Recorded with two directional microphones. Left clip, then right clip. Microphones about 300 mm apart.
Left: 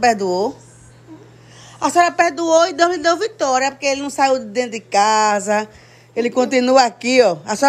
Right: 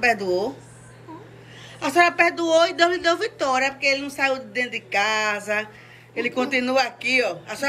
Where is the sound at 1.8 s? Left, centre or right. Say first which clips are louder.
Left 4 dB; centre.